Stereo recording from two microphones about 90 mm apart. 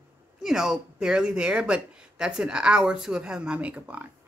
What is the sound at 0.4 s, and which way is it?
A woman's voice, 5° right (ahead or behind).